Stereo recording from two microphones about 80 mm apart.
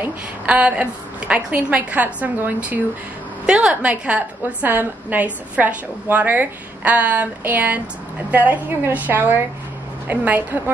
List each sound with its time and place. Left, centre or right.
0.0 s a woman's voice: centre
3.4 s a woman's voice: centre